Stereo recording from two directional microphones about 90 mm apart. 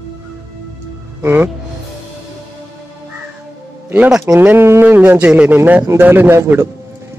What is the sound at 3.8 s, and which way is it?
A man's voice, 15° right (ahead or behind).